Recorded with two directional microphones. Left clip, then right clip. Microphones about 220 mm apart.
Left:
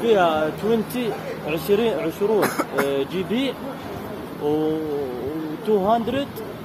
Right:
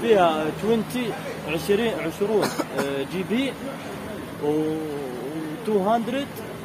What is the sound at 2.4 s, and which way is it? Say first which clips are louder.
Speech: left 3 dB; 15° left (ahead or behind).